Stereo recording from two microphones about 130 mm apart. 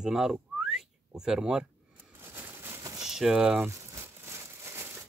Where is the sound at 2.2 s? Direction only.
15° right (ahead or behind).